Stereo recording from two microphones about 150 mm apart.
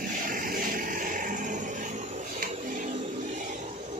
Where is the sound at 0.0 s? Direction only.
65° right (ahead or behind).